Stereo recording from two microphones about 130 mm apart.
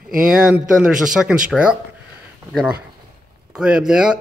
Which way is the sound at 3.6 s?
5° right (ahead or behind).